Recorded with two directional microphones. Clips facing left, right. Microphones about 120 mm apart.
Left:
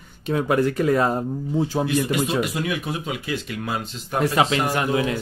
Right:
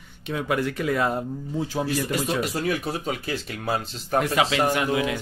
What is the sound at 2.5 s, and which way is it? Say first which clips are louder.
Speech: even; 40° right (ahead or behind).